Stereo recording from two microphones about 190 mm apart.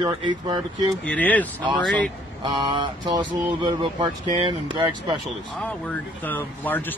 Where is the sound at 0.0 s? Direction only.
20° right (ahead or behind).